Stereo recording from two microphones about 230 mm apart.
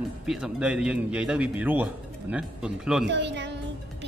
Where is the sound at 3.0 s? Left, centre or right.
Right.